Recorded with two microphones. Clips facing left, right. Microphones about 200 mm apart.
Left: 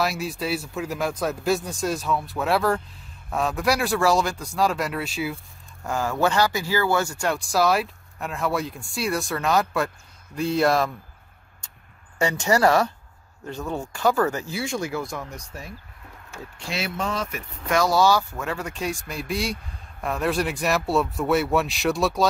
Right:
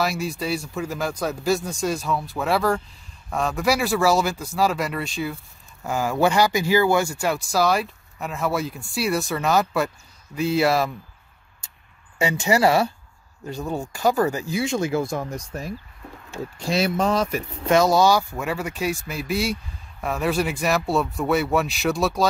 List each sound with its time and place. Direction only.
0.0 s speech: centre (ahead or behind)
5.9 s speech: 10° right (ahead or behind)
12.2 s speech: 5° right (ahead or behind); by 15.2 s 25° right (ahead or behind)
16.3 s speech: 40° right (ahead or behind)
17.6 s speech: 20° right (ahead or behind); by 22.3 s centre (ahead or behind)